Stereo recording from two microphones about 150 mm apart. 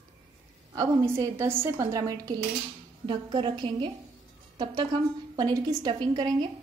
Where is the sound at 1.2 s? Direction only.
15° right (ahead or behind).